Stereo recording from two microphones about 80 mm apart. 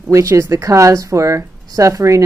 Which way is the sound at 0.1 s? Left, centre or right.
Right.